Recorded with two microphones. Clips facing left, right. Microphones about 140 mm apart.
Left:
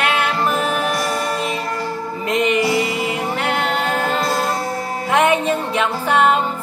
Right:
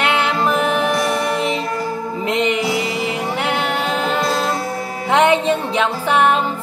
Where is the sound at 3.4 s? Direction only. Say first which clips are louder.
Even; 20° right (ahead or behind).